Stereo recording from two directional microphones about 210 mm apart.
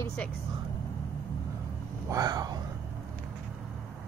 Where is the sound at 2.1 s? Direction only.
15° right (ahead or behind).